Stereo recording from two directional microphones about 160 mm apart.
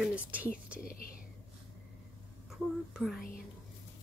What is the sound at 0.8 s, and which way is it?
Speech, 65° left (ahead or behind).